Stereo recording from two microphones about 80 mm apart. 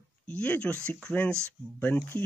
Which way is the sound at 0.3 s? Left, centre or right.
Centre.